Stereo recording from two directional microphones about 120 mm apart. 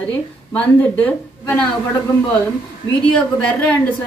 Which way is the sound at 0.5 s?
15° left (ahead or behind).